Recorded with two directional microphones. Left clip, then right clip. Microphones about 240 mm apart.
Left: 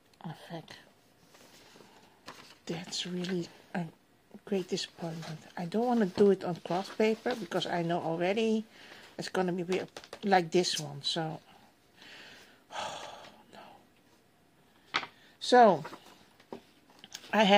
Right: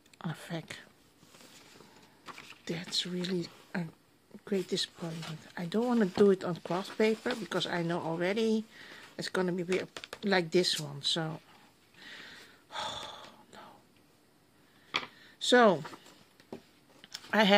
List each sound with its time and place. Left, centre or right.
0.2 s speech: right
2.6 s speech: centre
3.4 s a sound: centre
4.5 s speech: centre
12.0 s gasp: centre
15.3 s speech: centre
17.0 s a sound: centre